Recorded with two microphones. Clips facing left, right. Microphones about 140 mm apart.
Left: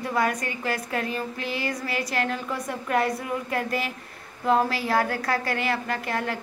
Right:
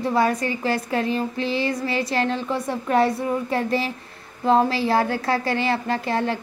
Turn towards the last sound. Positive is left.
turn(degrees=-30)  # may be behind; listen again after turning